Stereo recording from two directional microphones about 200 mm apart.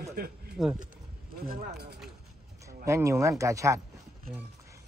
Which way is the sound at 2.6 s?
15° right (ahead or behind).